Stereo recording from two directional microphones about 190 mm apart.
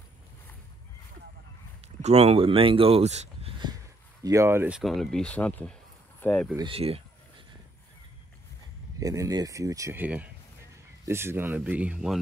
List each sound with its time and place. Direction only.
2.0 s speech: 35° right (ahead or behind)
4.2 s speech: 15° right (ahead or behind); by 6.5 s 5° left (ahead or behind)
6.5 s a sound: 25° right (ahead or behind)
9.0 s speech: 20° right (ahead or behind)